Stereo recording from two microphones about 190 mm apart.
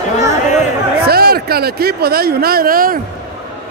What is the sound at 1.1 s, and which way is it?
Speech, 55° right (ahead or behind).